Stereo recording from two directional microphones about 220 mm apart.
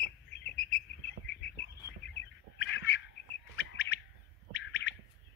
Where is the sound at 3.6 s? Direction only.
50° left (ahead or behind).